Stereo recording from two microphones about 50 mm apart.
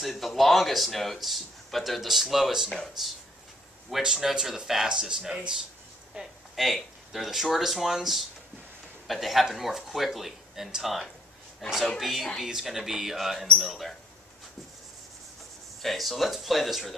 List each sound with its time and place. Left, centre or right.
0.0 s a man's voice: centre
2.7 s a man's voice: centre
4.0 s speech: centre
5.3 s speech: right
6.1 s a man's voice: centre
15.8 s a man's voice: centre